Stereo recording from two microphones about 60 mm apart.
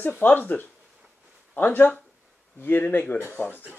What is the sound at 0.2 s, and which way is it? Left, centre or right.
Speech, left.